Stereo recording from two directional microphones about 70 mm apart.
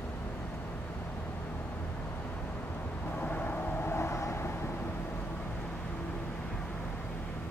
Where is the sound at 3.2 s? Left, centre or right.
Left.